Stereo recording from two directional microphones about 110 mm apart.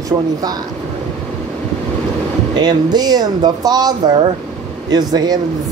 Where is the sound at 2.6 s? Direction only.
40° right (ahead or behind).